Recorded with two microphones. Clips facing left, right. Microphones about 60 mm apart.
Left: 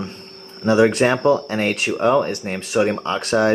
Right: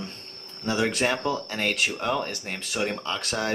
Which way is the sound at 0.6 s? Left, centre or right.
Left.